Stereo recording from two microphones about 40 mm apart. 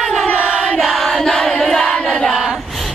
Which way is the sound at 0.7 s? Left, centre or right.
Centre.